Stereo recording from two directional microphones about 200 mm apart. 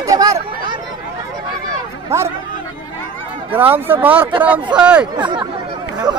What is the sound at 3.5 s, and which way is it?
Speech, 10° right (ahead or behind).